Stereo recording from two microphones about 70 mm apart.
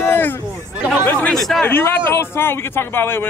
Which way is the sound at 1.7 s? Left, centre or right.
Left.